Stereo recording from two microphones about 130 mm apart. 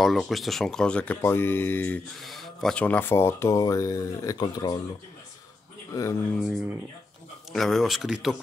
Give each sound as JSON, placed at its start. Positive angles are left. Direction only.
{"t": 0.0, "sound": "speech", "side_deg": 0}
{"t": 2.1, "sound": "speech", "side_deg": 0}
{"t": 2.8, "sound": "speech", "side_deg": 15}
{"t": 6.4, "sound": "speech", "side_deg": -10}
{"t": 7.5, "sound": "speech", "side_deg": 0}